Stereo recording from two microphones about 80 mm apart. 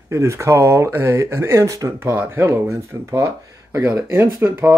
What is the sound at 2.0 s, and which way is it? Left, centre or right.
Speech, right.